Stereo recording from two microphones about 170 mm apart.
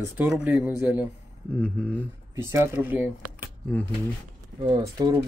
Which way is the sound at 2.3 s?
15° right (ahead or behind).